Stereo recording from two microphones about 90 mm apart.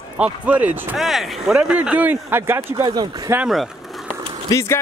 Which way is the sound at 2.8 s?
50° right (ahead or behind).